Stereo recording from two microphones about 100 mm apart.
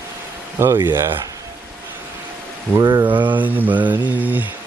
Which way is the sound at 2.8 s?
45° right (ahead or behind).